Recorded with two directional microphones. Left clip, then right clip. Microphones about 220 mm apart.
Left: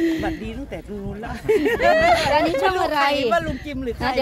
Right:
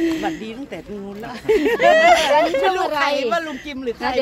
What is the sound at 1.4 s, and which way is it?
Speech, centre (ahead or behind).